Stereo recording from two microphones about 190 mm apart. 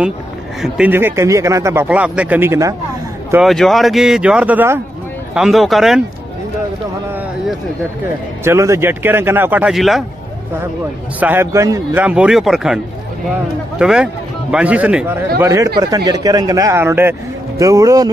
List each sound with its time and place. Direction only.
0.6 s speech: 5° right (ahead or behind)
3.4 s speech: centre (ahead or behind)
8.5 s speech: 15° right (ahead or behind)
11.1 s speech: 10° right (ahead or behind)